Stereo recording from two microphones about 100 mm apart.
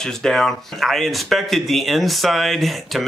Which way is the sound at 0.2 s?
5° left (ahead or behind).